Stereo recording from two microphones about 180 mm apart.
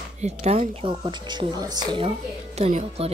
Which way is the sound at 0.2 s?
40° right (ahead or behind).